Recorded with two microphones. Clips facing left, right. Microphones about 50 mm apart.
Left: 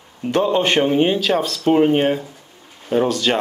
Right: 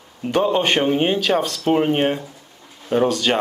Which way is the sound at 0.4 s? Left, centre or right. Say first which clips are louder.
Left 1 dB; centre.